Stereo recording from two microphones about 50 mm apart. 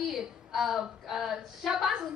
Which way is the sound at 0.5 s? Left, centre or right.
Centre.